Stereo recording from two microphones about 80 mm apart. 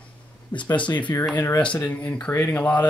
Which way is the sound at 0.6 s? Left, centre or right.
Left.